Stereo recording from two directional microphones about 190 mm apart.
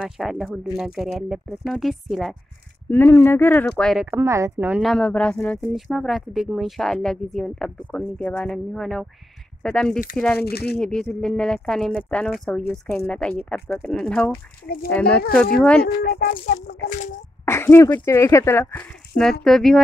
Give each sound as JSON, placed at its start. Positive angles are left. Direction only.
{"t": 0.0, "sound": "speech", "side_deg": 0}
{"t": 2.9, "sound": "speech", "side_deg": 10}
{"t": 4.1, "sound": "speech", "side_deg": -15}
{"t": 10.4, "sound": "speech", "side_deg": 55}
{"t": 10.8, "sound": "speech", "side_deg": 5}
{"t": 16.0, "sound": "speech", "side_deg": 55}
{"t": 17.5, "sound": "speech", "side_deg": 15}